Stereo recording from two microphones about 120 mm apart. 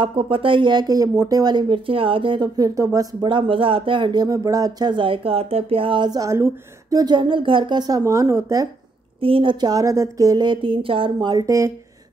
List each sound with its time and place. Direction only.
0.0 s speech: 50° right (ahead or behind); by 8.6 s 25° right (ahead or behind)
9.2 s speech: 45° right (ahead or behind); by 11.7 s 30° right (ahead or behind)